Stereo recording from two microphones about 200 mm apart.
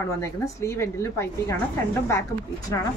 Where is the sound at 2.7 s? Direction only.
15° left (ahead or behind).